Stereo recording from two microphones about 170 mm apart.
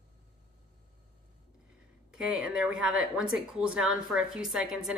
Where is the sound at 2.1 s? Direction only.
5° right (ahead or behind).